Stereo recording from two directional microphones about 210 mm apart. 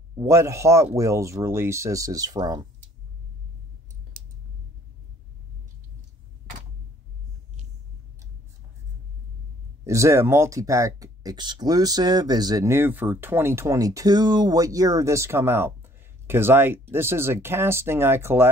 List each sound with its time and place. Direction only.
0.1 s speech: 15° right (ahead or behind)
4.1 s clicking: 40° right (ahead or behind)
9.8 s speech: 15° right (ahead or behind)